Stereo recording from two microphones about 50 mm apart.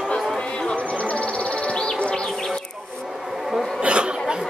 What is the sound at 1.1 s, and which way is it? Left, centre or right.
Bee, left.